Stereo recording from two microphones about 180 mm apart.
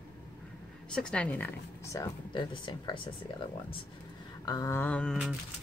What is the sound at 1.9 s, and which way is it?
Speech, 20° left (ahead or behind).